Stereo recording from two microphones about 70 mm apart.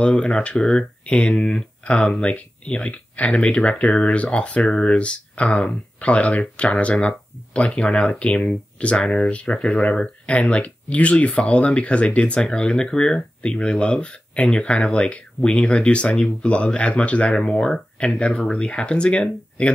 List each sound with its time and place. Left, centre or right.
0.0 s speech: centre